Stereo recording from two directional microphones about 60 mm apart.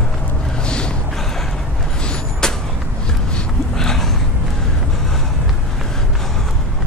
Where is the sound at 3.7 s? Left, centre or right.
Centre.